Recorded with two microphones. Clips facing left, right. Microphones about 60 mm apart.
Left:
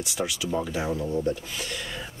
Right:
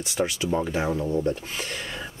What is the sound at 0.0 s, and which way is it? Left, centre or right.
Speech, right.